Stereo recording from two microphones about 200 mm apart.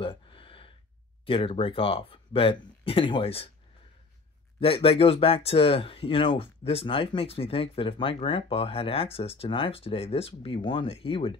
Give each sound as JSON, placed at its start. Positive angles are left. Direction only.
{"t": 0.0, "sound": "gasp", "side_deg": 25}
{"t": 1.2, "sound": "speech", "side_deg": 25}
{"t": 4.6, "sound": "speech", "side_deg": 30}